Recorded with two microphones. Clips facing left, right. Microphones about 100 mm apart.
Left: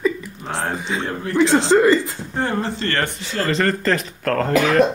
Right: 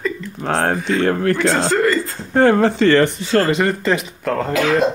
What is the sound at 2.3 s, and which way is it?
Speech, 75° right (ahead or behind).